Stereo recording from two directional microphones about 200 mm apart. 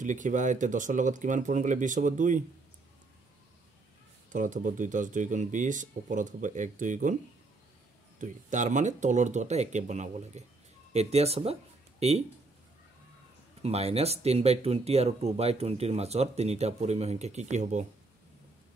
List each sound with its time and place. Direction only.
0.0 s speech: 40° right (ahead or behind)
4.3 s speech: 40° right (ahead or behind)
8.2 s speech: 40° right (ahead or behind)
13.6 s speech: 30° right (ahead or behind)